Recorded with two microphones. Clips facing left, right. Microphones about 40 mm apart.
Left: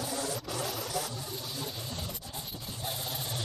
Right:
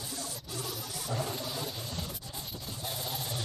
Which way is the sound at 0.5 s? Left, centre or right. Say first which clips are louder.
Left 3 dB; left.